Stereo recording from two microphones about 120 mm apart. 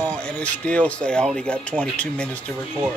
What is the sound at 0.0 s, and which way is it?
Speech, 10° left (ahead or behind).